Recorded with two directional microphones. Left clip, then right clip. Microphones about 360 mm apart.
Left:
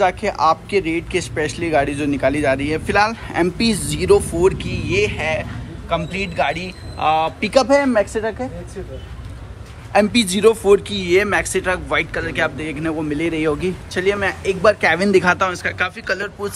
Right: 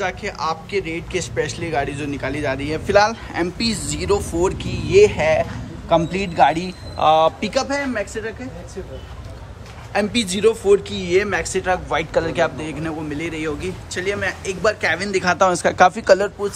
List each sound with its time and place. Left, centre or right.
0.0 s a man's voice: centre
8.1 s a man's voice: centre
9.9 s a man's voice: centre
15.3 s speech: centre